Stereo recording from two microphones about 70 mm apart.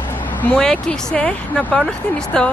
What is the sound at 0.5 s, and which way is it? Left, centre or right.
Speech, centre.